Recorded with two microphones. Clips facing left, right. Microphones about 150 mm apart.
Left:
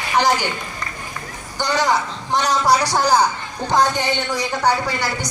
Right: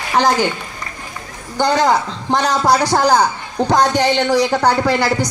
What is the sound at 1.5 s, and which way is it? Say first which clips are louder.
A man's voice: right 5 dB; 55° right (ahead or behind).